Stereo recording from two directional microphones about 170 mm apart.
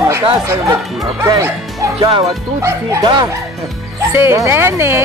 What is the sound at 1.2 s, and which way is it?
Speech, 15° right (ahead or behind).